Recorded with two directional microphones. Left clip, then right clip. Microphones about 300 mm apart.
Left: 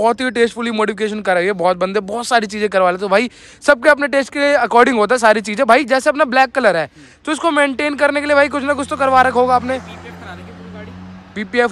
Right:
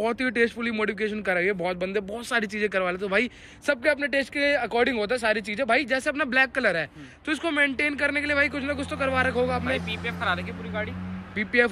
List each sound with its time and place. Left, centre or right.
0.0 s speech: centre
11.3 s speech: centre